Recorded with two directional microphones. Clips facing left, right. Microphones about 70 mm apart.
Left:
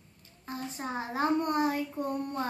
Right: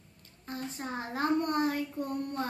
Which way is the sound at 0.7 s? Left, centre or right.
Left.